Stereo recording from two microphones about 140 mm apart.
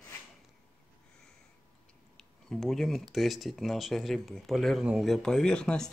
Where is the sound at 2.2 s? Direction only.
Centre (ahead or behind).